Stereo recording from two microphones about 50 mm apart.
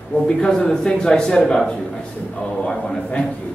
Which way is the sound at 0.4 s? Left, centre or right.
Centre.